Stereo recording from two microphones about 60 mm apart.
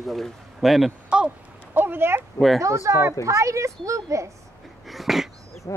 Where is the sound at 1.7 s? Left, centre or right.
Right.